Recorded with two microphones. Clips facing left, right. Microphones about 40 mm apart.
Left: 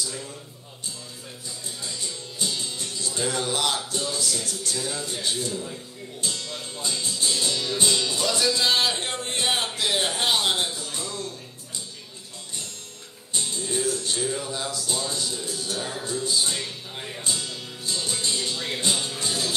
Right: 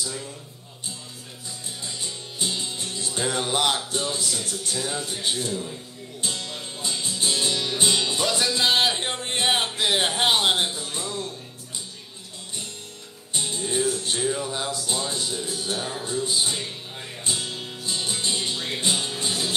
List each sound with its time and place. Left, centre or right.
2.3 s speech: right
6.2 s music: right
9.8 s speech: right
13.4 s music: right
14.5 s speech: right
16.9 s music: centre
17.2 s music: right